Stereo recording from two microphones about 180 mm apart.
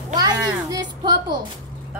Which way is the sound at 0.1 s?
20° right (ahead or behind).